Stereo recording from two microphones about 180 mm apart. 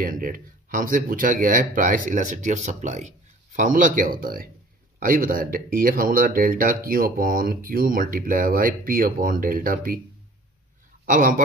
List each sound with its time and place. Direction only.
0.0 s speech: 50° right (ahead or behind)
11.1 s speech: 50° right (ahead or behind)